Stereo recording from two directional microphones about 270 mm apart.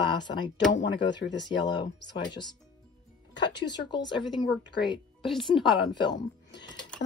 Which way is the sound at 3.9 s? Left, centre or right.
Centre.